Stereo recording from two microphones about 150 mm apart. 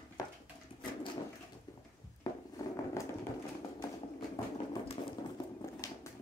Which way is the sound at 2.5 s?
20° left (ahead or behind).